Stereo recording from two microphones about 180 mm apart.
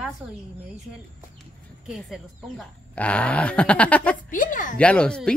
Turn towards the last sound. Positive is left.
turn(degrees=5)  # may be behind; listen again after turning